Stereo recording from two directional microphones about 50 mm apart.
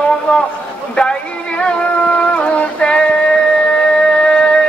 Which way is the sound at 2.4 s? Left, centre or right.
Left.